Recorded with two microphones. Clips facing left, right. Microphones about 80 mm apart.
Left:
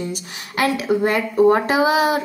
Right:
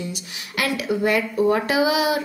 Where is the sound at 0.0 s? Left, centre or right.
Left.